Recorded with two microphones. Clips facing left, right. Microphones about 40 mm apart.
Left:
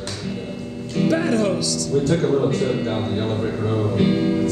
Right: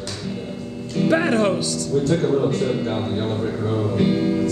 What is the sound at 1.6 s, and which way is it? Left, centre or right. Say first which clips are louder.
Speech: left 1 dB; right.